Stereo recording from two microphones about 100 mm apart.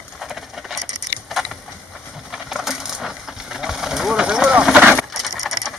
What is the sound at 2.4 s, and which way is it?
Coin, 5° right (ahead or behind).